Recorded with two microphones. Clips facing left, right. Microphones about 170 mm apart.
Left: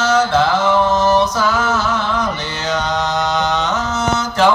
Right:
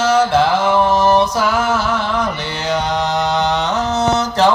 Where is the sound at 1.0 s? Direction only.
55° right (ahead or behind).